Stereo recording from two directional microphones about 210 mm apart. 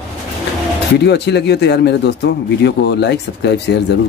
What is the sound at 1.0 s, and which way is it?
Speech, 55° left (ahead or behind).